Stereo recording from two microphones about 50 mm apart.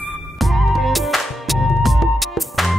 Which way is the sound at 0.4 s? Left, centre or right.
Centre.